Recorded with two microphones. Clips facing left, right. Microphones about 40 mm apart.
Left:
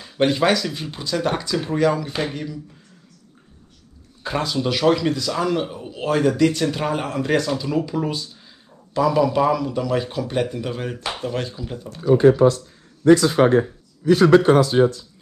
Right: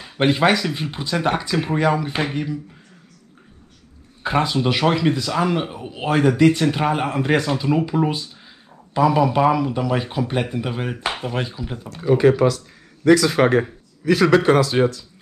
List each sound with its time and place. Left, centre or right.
0.0 s a man's voice: right
4.2 s a man's voice: right
12.1 s speech: right